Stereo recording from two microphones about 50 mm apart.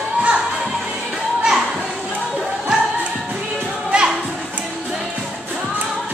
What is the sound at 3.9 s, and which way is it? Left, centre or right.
Music, right.